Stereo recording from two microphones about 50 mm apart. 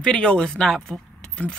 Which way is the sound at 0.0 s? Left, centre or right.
Left.